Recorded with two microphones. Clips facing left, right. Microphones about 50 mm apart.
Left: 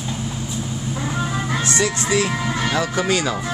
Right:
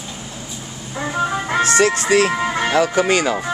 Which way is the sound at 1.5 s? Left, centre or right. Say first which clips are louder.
Right 7 dB; right.